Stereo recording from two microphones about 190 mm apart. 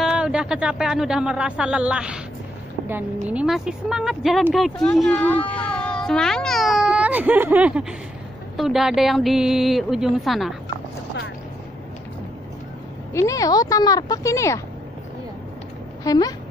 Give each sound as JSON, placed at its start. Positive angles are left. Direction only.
{"t": 0.0, "sound": "speech", "side_deg": -5}
{"t": 3.3, "sound": "a child's voice", "side_deg": -5}
{"t": 13.1, "sound": "speech", "side_deg": 15}
{"t": 16.0, "sound": "speech", "side_deg": 20}